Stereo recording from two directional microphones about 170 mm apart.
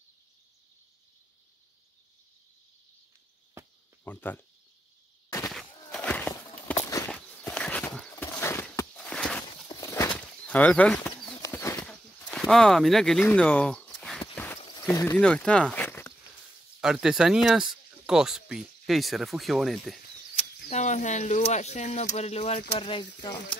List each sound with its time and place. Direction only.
4.0 s speech: 10° left (ahead or behind)
5.5 s walk: 5° left (ahead or behind)
7.1 s horse: 10° left (ahead or behind)
9.7 s a sound: 20° left (ahead or behind)
10.1 s bird: 10° left (ahead or behind)
11.4 s pigeon: 15° left (ahead or behind)
11.8 s a sound: 5° left (ahead or behind)
14.3 s a sound: 15° left (ahead or behind)
14.7 s speech: 20° left (ahead or behind)
16.8 s speech: 5° right (ahead or behind)
20.7 s speech: 45° left (ahead or behind)